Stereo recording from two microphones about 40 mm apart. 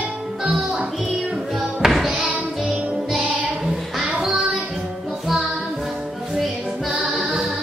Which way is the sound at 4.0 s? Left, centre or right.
Centre.